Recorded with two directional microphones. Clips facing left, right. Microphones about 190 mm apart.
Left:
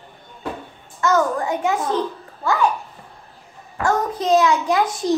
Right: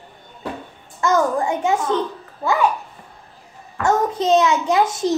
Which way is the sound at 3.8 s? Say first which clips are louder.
Right 2 dB; 25° right (ahead or behind).